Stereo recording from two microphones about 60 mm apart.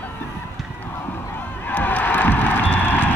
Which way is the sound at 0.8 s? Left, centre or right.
Left.